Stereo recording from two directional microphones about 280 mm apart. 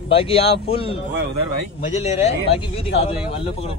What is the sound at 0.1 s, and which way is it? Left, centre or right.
Speech, centre.